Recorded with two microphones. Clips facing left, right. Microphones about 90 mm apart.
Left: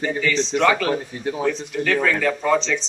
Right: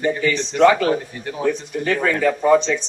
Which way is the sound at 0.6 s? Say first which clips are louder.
Right 6 dB; 15° right (ahead or behind).